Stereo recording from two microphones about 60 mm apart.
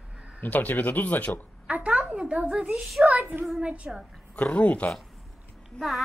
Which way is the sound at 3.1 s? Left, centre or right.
Right.